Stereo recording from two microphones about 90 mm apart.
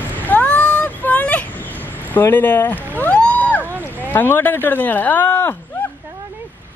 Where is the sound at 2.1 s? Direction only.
20° left (ahead or behind).